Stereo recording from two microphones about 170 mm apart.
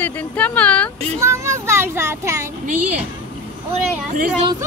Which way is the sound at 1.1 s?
15° right (ahead or behind).